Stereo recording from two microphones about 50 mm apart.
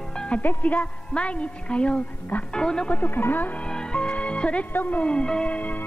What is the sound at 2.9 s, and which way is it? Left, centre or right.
Speech, left.